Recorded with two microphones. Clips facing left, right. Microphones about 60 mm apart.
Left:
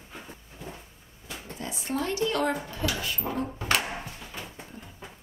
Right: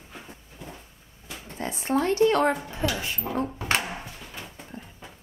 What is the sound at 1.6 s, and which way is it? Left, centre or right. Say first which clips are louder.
Speech: right 6 dB; right.